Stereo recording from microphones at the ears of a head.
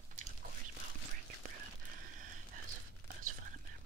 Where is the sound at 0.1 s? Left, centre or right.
Right.